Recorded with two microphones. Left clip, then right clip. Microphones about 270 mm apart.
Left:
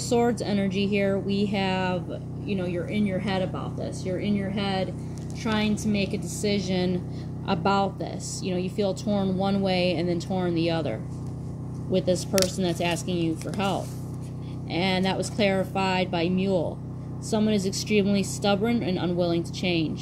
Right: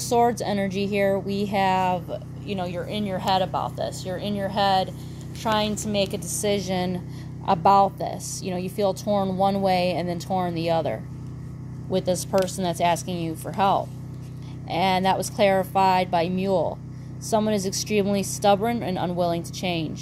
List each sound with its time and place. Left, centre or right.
0.1 s a woman's voice: right
5.4 s a woman's voice: right